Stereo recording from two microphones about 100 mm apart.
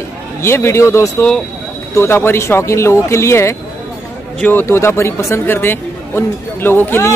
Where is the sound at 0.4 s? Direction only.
25° left (ahead or behind).